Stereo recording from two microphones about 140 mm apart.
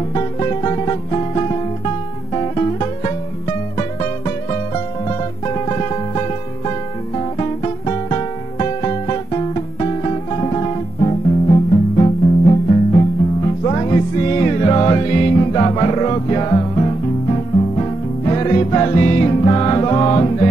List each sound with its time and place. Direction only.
0.1 s music: 35° left (ahead or behind)
5.0 s music: 35° left (ahead or behind)